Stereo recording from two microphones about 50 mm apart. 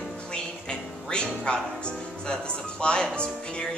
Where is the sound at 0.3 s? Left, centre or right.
Centre.